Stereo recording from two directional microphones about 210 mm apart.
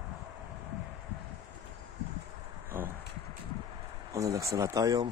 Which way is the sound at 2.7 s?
10° right (ahead or behind).